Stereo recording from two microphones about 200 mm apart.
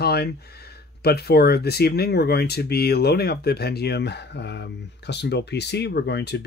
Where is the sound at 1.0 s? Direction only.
50° left (ahead or behind).